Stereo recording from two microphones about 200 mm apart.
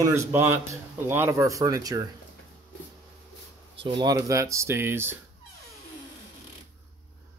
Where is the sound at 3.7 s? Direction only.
25° right (ahead or behind).